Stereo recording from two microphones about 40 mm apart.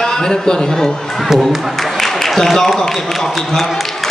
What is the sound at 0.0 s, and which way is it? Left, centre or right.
Speech, centre.